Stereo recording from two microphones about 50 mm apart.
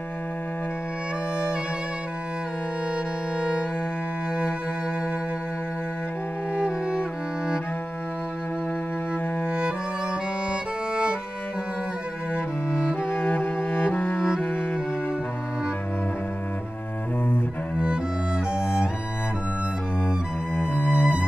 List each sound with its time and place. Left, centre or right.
3.3 s music: centre
6.5 s music: centre
9.5 s music: centre
12.7 s music: left
18.6 s music: left
20.5 s music: left
21.0 s music: right